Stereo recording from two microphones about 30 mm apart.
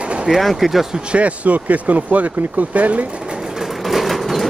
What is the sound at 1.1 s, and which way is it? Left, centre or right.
Speech, right.